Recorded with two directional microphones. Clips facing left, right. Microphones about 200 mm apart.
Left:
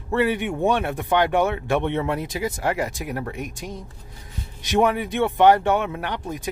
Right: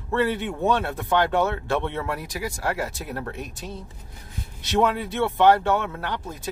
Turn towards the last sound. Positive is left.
turn(degrees=15)  # may be behind; listen again after turning